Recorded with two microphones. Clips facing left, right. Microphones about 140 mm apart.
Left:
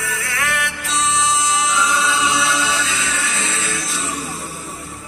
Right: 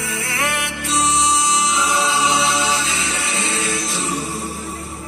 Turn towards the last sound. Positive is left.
turn(degrees=-30)  # may be behind; listen again after turning